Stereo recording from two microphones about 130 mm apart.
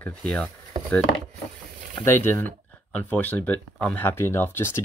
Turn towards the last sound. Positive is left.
turn(degrees=20)  # may be behind; listen again after turning